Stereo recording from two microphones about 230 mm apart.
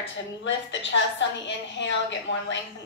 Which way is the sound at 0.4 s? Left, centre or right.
Left.